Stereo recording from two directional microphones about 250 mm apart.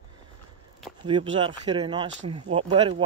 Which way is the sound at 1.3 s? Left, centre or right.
Centre.